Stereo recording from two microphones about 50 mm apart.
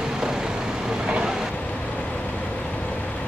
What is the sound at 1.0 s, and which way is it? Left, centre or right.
Vehicle, centre.